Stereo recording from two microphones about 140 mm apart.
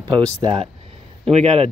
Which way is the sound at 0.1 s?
30° right (ahead or behind).